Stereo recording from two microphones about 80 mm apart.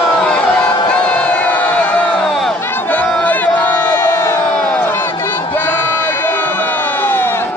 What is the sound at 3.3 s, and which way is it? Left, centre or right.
Crowd, left.